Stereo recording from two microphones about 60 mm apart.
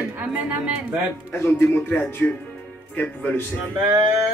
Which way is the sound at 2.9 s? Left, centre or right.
Left.